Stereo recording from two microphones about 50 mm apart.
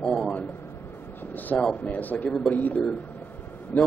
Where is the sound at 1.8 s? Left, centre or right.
Left.